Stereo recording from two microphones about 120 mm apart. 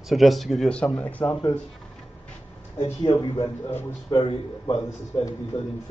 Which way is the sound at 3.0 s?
35° left (ahead or behind).